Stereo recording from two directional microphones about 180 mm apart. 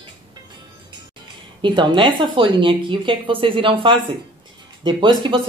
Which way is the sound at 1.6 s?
25° right (ahead or behind).